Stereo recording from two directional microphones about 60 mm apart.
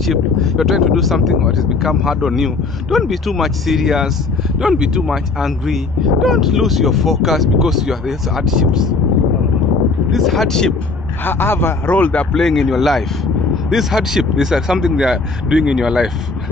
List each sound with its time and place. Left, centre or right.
0.0 s speech: centre
10.1 s speech: centre
11.2 s a man's voice: left; by 16.1 s centre